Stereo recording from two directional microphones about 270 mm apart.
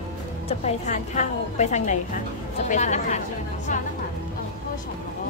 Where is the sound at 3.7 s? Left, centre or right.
Left.